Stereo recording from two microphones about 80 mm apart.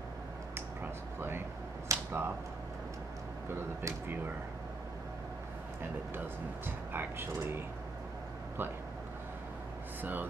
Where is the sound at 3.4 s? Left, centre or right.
Right.